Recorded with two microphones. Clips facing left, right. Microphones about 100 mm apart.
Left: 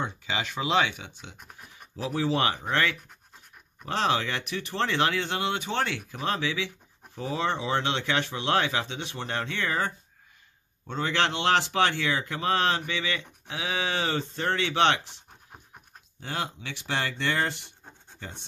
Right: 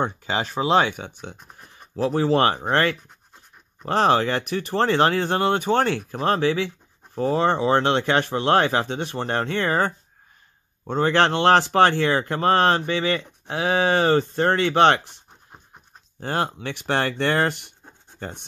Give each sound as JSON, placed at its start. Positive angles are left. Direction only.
{"t": 0.0, "sound": "speech", "side_deg": -40}
{"t": 16.2, "sound": "speech", "side_deg": -50}
{"t": 18.2, "sound": "speech", "side_deg": -50}